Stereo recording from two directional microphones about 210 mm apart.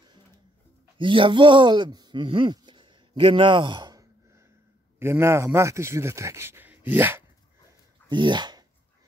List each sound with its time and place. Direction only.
0.9 s speech: 25° right (ahead or behind)
8.1 s speech: 20° right (ahead or behind)